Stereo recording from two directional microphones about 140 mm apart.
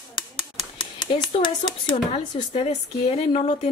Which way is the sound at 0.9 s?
30° left (ahead or behind).